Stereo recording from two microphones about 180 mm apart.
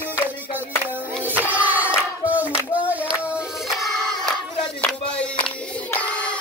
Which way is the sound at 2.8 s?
10° right (ahead or behind).